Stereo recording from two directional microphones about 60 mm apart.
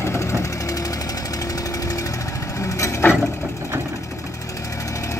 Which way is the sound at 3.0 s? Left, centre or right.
Left.